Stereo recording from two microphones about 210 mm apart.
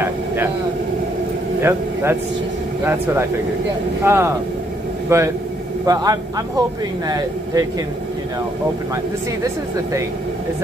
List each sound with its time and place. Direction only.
1.6 s a man's voice: 10° right (ahead or behind)